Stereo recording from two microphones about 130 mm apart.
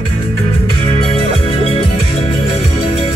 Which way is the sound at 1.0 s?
45° left (ahead or behind).